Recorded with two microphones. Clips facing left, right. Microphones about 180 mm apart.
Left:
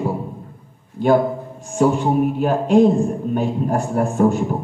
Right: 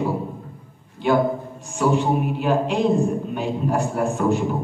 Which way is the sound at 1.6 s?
50° left (ahead or behind).